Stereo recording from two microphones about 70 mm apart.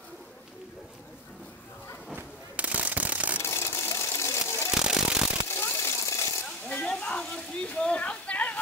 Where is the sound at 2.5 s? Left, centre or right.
Centre.